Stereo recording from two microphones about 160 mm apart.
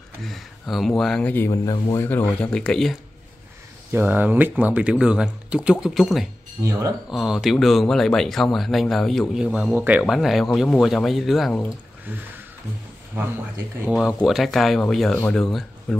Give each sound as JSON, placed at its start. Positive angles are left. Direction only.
{"t": 0.2, "sound": "speech", "side_deg": 0}
{"t": 1.5, "sound": "speech", "side_deg": 25}
{"t": 2.0, "sound": "speech", "side_deg": 10}
{"t": 3.9, "sound": "speech", "side_deg": -10}
{"t": 6.6, "sound": "speech", "side_deg": -20}
{"t": 7.1, "sound": "speech", "side_deg": 0}
{"t": 12.1, "sound": "speech", "side_deg": -10}
{"t": 13.7, "sound": "speech", "side_deg": -5}